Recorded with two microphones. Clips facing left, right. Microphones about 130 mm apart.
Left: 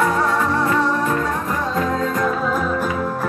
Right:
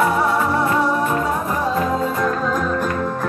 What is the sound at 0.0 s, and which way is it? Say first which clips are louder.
Music: right 1 dB; 10° right (ahead or behind).